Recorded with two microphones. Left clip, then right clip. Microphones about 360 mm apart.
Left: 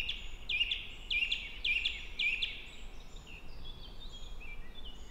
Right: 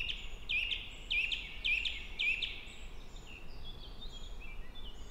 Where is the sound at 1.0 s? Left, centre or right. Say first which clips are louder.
Left 1 dB; left.